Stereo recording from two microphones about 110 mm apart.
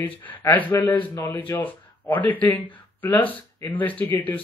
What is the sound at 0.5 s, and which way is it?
Speech, 15° left (ahead or behind).